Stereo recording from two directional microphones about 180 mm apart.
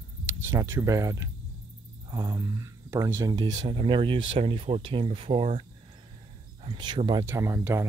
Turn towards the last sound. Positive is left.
turn(degrees=-15)  # may be behind; listen again after turning